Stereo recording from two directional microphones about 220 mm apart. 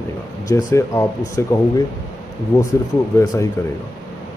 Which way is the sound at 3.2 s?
15° left (ahead or behind).